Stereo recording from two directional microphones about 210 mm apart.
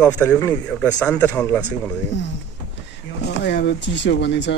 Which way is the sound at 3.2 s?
55° left (ahead or behind).